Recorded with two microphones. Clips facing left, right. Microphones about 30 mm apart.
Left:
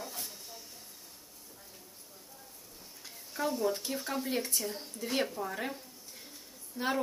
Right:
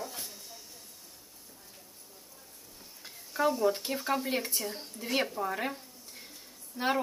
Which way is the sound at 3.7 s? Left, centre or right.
Right.